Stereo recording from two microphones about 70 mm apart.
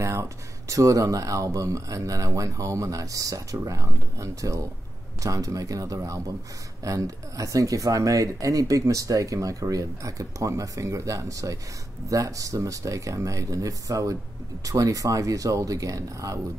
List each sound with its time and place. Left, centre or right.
0.0 s speech: right